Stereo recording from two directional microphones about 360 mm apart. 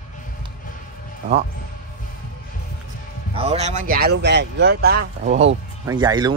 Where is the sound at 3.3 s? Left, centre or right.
Centre.